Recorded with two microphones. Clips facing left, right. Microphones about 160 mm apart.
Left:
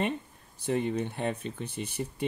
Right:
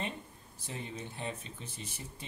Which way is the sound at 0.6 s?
65° left (ahead or behind).